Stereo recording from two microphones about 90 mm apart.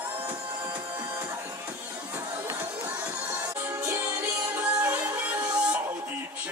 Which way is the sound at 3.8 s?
20° right (ahead or behind).